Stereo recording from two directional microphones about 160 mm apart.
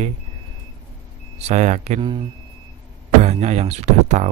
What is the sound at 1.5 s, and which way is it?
Speech, 45° right (ahead or behind).